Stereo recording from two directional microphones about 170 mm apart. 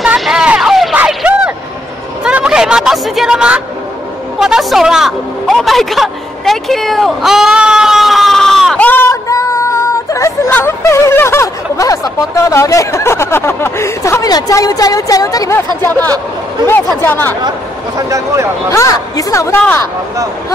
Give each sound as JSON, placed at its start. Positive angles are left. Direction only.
{"t": 0.0, "sound": "a sound", "side_deg": 0}
{"t": 4.4, "sound": "a woman's voice", "side_deg": 0}
{"t": 17.4, "sound": "speech", "side_deg": -25}
{"t": 18.7, "sound": "a woman's voice", "side_deg": 20}